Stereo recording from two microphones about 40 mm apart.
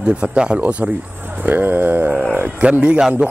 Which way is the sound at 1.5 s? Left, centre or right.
Right.